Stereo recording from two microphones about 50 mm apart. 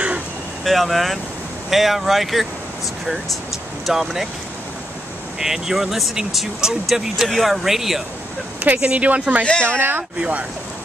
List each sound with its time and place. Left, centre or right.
0.7 s speech: centre
3.8 s speech: centre
5.4 s speech: centre
7.2 s speech: centre
8.7 s speech: right
9.7 s speech: right